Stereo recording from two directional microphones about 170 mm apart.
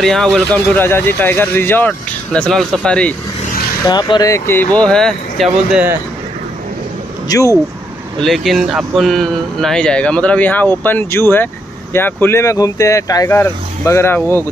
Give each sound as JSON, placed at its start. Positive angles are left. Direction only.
{"t": 0.0, "sound": "speech", "side_deg": 5}
{"t": 3.8, "sound": "speech", "side_deg": 25}
{"t": 7.3, "sound": "speech", "side_deg": 20}
{"t": 8.2, "sound": "speech", "side_deg": 0}